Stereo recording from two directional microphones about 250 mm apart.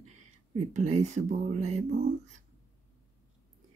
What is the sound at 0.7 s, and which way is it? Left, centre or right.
Speech, right.